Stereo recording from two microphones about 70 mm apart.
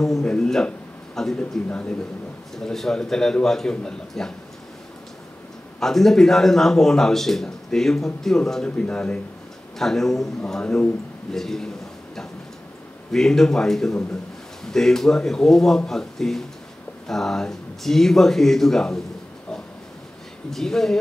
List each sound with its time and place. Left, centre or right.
0.0 s a man's voice: centre
2.5 s a man's voice: centre
5.8 s speech: centre
13.1 s speech: centre
20.4 s speech: centre